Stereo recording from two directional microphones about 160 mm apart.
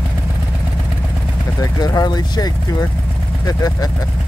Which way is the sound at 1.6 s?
25° left (ahead or behind).